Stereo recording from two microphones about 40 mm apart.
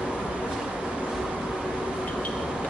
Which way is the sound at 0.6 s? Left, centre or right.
Centre.